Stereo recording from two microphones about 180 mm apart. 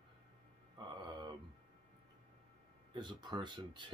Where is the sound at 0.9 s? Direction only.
25° right (ahead or behind).